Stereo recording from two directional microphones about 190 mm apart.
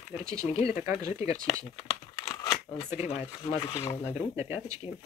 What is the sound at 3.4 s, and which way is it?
Speech, 20° left (ahead or behind).